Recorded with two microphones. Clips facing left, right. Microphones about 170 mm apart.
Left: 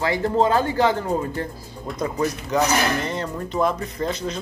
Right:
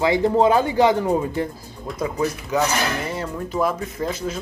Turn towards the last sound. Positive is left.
turn(degrees=-5)  # may be behind; listen again after turning